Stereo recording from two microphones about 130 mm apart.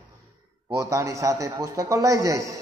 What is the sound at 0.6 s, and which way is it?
A man's voice, 25° right (ahead or behind).